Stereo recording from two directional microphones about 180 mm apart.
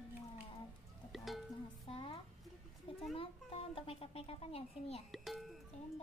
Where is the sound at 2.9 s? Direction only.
30° left (ahead or behind).